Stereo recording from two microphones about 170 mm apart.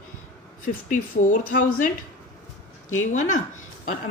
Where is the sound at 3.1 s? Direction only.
45° left (ahead or behind).